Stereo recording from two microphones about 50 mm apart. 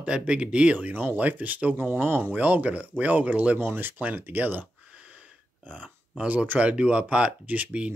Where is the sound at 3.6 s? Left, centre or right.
Right.